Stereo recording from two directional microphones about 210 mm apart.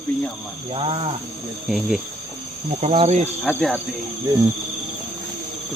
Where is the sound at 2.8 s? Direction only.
30° right (ahead or behind).